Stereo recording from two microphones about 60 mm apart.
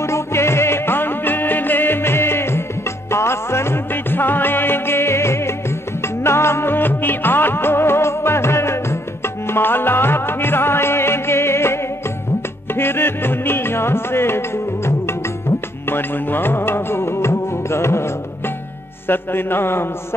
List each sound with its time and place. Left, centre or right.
0.0 s music: left
6.2 s music of bollywood: left
9.5 s music: left
15.9 s music: left
19.0 s a man's voice: left